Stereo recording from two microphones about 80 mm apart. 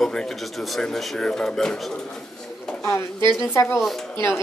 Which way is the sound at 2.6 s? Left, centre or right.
Centre.